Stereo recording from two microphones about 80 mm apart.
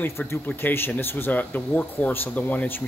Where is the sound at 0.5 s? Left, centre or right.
Left.